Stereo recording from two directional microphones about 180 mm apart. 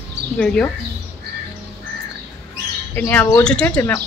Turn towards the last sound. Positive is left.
turn(degrees=10)  # may be behind; listen again after turning